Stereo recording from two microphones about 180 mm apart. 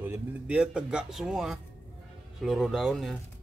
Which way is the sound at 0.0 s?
10° right (ahead or behind).